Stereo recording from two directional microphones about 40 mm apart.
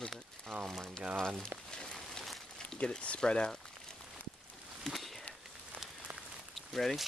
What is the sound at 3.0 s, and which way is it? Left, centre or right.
Speech, left.